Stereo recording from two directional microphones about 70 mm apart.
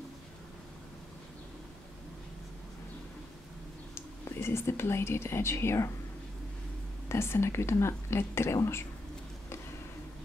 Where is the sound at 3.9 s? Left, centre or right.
Left.